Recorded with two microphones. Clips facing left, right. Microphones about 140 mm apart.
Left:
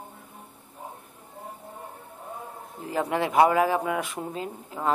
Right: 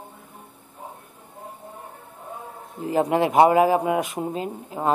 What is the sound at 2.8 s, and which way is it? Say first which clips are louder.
Speech: right 6 dB; 20° right (ahead or behind).